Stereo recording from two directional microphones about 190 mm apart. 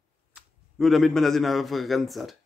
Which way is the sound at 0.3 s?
Centre (ahead or behind).